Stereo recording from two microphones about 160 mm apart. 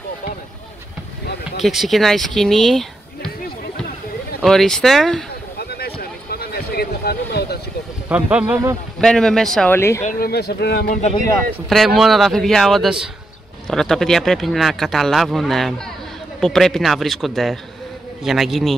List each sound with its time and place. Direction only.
1.6 s speech: centre (ahead or behind)
4.4 s speech: centre (ahead or behind)
5.6 s a sound: 80° left
8.1 s speech: 10° right (ahead or behind)
9.0 s speech: 5° left (ahead or behind)
9.8 s speech: 15° left (ahead or behind)
10.1 s speech: 75° left (ahead or behind)
10.9 s speech: 45° left (ahead or behind)
11.7 s speech: centre (ahead or behind)